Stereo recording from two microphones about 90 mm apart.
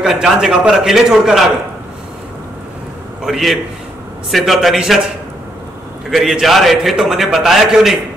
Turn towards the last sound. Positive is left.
turn(degrees=-5)  # may be behind; listen again after turning